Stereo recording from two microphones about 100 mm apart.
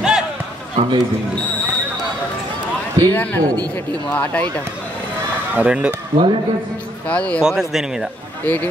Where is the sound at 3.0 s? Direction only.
15° left (ahead or behind).